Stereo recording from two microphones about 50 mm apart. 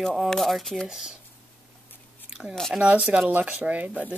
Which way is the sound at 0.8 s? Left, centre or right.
Centre.